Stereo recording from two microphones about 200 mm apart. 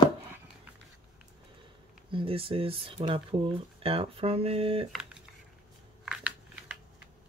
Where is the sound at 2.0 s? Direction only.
25° right (ahead or behind).